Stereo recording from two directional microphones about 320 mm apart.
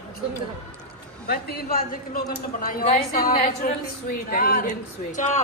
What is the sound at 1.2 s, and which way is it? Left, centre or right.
A man's voice, left.